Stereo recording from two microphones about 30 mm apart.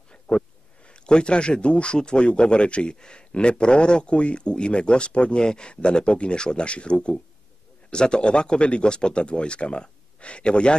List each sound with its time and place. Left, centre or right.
0.3 s speech: left
5.4 s speech: left